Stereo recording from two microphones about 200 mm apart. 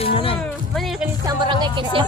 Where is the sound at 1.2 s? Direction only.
20° right (ahead or behind).